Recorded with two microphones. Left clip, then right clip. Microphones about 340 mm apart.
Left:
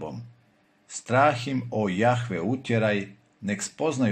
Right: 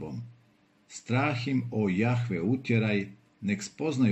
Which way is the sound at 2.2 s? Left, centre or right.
Centre.